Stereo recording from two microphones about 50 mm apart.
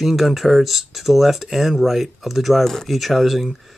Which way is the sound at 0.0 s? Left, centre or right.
Centre.